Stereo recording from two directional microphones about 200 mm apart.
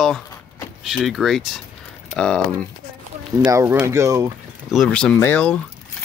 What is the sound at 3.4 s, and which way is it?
Speech, 10° right (ahead or behind).